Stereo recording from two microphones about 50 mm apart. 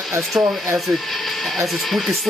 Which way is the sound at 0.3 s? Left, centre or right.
Right.